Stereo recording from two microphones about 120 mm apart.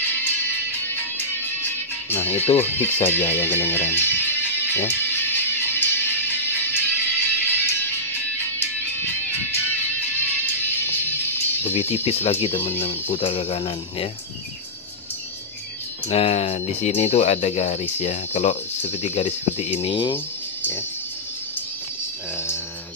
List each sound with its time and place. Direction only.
1.1 s music: 15° left (ahead or behind)
9.0 s music: 15° left (ahead or behind)
11.6 s speech: 60° left (ahead or behind)
16.1 s speech: 50° left (ahead or behind)